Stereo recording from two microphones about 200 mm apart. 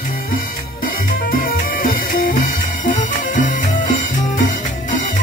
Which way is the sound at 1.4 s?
45° left (ahead or behind).